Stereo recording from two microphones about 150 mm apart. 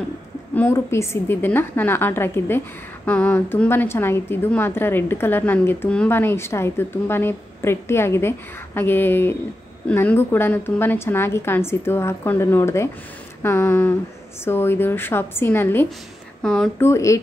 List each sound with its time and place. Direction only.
0.6 s a woman's voice: 15° left (ahead or behind)
16.4 s speech: 5° left (ahead or behind)
16.8 s speech: 20° left (ahead or behind)